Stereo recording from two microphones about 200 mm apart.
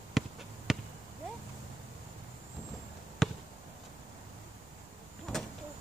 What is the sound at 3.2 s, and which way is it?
Basketball bounce, centre (ahead or behind).